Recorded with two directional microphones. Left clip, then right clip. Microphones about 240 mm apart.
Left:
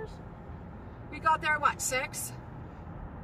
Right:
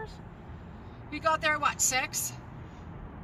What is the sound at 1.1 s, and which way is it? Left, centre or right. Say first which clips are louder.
Speech: even; left.